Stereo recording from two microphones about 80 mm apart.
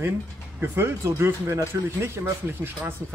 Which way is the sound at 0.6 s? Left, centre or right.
Right.